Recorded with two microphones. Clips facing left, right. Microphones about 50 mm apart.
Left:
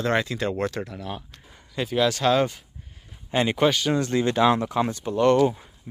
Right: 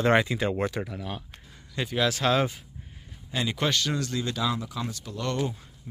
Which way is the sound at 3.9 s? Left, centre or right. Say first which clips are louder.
Left 8 dB; left.